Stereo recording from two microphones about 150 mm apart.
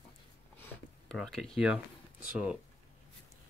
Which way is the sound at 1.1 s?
Centre (ahead or behind).